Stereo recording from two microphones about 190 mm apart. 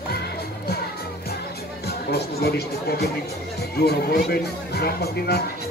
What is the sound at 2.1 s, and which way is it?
Speech, 55° left (ahead or behind).